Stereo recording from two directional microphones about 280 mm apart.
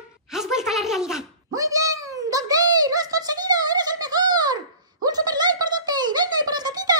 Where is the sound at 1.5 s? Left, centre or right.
Centre.